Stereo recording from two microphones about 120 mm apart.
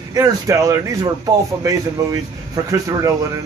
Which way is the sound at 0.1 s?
30° right (ahead or behind).